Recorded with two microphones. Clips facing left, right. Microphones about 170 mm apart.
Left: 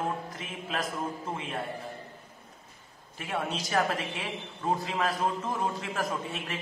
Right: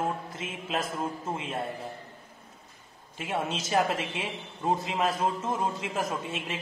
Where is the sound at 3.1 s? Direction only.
20° right (ahead or behind).